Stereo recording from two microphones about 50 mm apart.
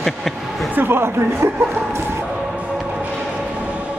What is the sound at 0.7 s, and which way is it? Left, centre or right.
Speech, right.